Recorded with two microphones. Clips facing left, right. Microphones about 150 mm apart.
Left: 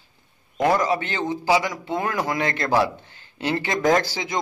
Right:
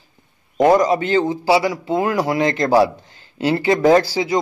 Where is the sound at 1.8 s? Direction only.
35° right (ahead or behind).